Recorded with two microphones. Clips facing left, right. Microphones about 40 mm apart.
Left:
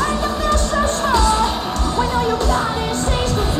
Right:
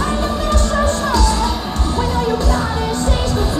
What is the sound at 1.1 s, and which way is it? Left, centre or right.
Music, left.